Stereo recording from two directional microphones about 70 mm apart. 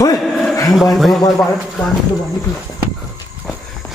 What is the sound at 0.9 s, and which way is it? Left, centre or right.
Speech, centre.